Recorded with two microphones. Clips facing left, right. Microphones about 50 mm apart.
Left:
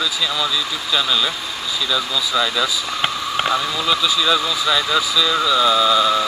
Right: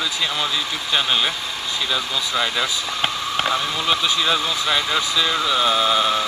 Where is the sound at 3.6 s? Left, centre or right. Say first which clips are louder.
Left 2 dB; right.